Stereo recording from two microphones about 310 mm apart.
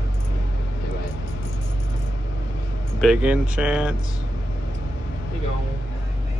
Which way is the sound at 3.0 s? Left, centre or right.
Centre.